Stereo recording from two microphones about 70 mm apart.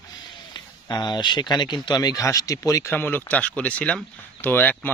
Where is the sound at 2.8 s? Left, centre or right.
Left.